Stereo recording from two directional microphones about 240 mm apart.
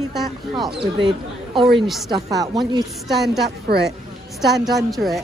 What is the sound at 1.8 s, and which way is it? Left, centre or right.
Speech, centre.